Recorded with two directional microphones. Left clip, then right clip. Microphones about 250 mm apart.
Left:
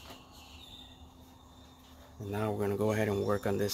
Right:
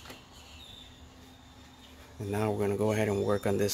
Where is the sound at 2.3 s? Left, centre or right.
Centre.